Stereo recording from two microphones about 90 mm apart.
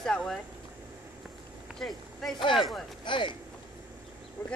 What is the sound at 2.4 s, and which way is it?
Speech, 65° left (ahead or behind).